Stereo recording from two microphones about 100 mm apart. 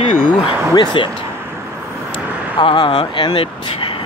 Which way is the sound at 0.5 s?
55° left (ahead or behind).